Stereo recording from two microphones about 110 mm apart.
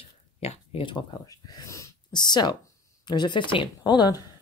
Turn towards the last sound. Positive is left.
turn(degrees=40)  # may be behind; listen again after turning